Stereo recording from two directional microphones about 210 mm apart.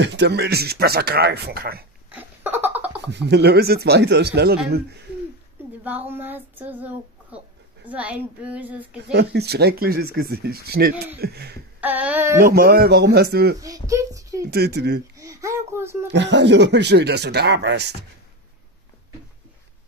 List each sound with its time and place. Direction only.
0.0 s speech: 55° right (ahead or behind)
2.0 s giggle: 10° right (ahead or behind)
3.1 s speech: 55° right (ahead or behind)
5.9 s child singing: 10° right (ahead or behind)
9.1 s speech: 50° right (ahead or behind)
11.8 s a child's voice: 10° right (ahead or behind)
12.4 s speech: 45° right (ahead or behind)
13.6 s a child's voice: 15° right (ahead or behind)
14.5 s speech: 50° right (ahead or behind)
15.1 s a child's voice: 15° right (ahead or behind)
16.1 s speech: 55° right (ahead or behind)